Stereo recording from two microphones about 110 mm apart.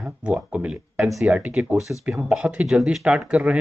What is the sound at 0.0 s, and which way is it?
Speech, 10° right (ahead or behind).